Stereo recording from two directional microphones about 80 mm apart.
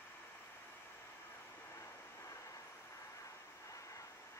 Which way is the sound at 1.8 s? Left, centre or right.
Left.